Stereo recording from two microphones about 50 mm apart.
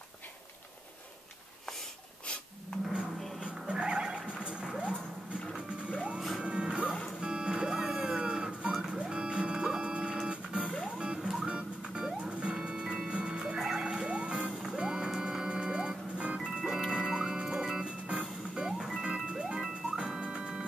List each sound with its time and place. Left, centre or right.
3.3 s music: centre
5.9 s music: centre
8.7 s music: centre
9.0 s music: centre
10.6 s music: centre
11.4 s music: centre
13.8 s music: right